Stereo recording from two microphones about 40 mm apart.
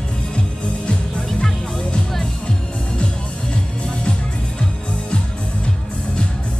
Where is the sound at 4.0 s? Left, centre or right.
Left.